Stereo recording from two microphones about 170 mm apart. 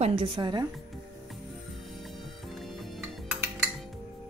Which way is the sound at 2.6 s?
Centre (ahead or behind).